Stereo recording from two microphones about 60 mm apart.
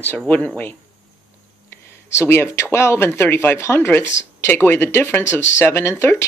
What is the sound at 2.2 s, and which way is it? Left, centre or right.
Speech, left.